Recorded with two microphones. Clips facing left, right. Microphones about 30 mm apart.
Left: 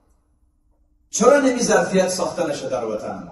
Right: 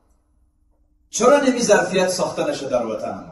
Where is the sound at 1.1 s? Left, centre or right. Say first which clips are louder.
Even; right.